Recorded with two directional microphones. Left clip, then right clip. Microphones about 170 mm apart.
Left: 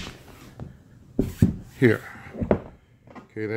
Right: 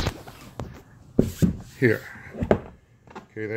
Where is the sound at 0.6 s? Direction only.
40° right (ahead or behind).